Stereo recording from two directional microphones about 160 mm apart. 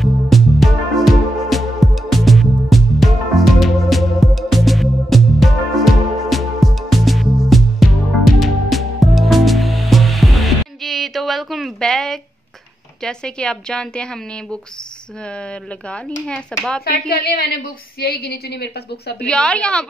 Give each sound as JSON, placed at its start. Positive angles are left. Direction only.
{"t": 0.0, "sound": "music", "side_deg": 0}
{"t": 13.0, "sound": "a woman's voice", "side_deg": 5}
{"t": 17.1, "sound": "a woman's voice", "side_deg": 70}
{"t": 19.1, "sound": "speech", "side_deg": 5}